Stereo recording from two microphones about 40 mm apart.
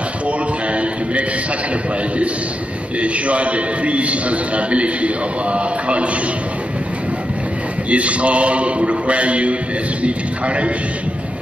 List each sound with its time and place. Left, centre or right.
3.0 s a man's voice: right
7.9 s a man's voice: right